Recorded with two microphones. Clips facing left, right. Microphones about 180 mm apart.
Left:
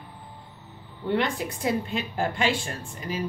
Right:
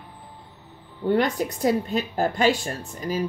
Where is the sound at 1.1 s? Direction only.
40° right (ahead or behind).